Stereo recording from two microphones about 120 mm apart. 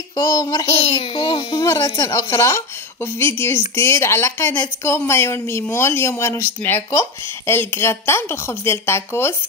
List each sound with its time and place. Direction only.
0.1 s a child's voice: 30° left (ahead or behind)
0.7 s a child's voice: 60° left (ahead or behind); by 9.3 s 20° left (ahead or behind)